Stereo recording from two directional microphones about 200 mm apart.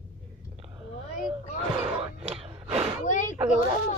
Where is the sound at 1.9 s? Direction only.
30° right (ahead or behind).